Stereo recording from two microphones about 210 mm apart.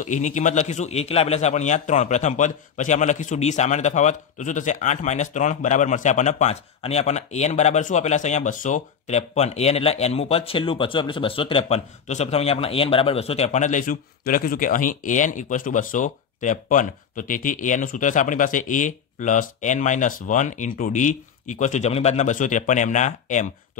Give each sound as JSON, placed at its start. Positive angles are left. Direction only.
{"t": 0.0, "sound": "a man's voice", "side_deg": 35}